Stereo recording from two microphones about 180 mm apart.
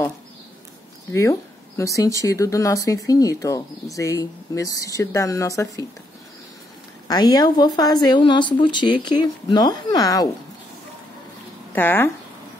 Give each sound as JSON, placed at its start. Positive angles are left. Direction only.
{"t": 1.8, "sound": "speech", "side_deg": 15}
{"t": 7.1, "sound": "speech", "side_deg": 20}
{"t": 11.7, "sound": "speech", "side_deg": 10}